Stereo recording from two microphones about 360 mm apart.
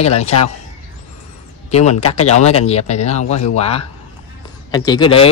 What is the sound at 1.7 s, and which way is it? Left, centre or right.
Speech, centre.